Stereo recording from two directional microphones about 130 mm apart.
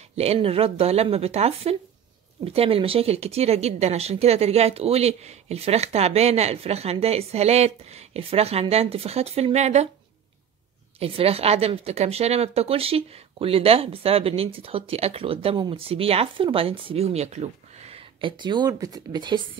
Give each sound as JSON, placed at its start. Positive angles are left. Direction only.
{"t": 0.1, "sound": "a woman's voice", "side_deg": -50}
{"t": 11.0, "sound": "a woman's voice", "side_deg": -50}